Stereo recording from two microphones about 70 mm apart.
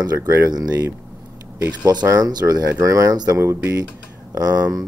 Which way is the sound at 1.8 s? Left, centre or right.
Right.